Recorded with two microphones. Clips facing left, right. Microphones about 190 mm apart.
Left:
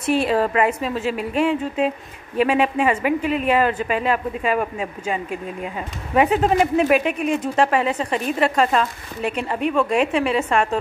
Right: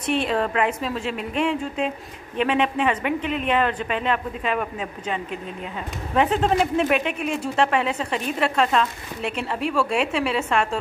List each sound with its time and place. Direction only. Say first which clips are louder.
0.0 s speech: left 4 dB; 5° left (ahead or behind)